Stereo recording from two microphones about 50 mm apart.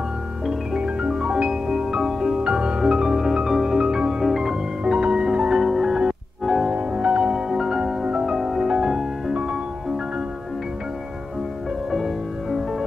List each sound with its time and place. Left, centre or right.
0.5 s music: centre
5.6 s music: centre
11.9 s music: centre